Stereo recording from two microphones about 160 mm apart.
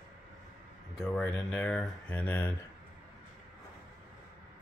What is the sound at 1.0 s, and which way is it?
Speech, 10° left (ahead or behind).